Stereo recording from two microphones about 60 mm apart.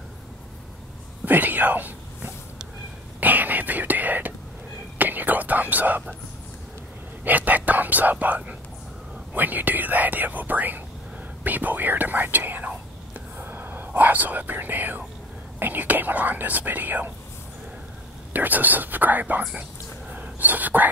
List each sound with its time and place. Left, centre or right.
1.2 s whispering: right
7.2 s whispering: right
9.3 s speech: right
13.4 s whispering: right
15.6 s speech: right
18.3 s speech: right
20.1 s whispering: right